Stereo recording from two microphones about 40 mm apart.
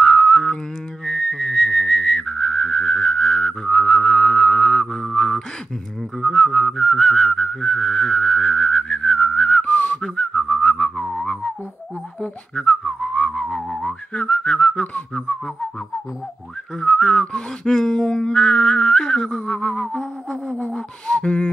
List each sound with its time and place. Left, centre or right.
0.1 s whistling: centre
2.9 s whistling: centre
5.1 s music: centre
6.2 s whistling: centre
9.7 s whistling: left
10.0 s whistling: centre
12.5 s whistling: centre
14.1 s whistling: left
15.1 s a sound: centre
16.7 s a sound: centre
19.4 s whistling: left
19.9 s music: centre
20.7 s a sound: left